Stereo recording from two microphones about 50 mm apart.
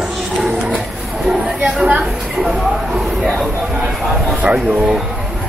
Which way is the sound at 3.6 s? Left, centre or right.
Centre.